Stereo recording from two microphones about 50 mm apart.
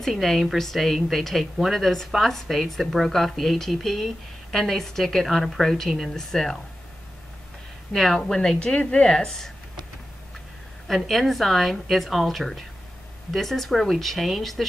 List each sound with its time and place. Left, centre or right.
0.0 s a woman's voice: centre
7.9 s a woman's voice: centre
8.2 s a woman's voice: centre
10.9 s a woman's voice: centre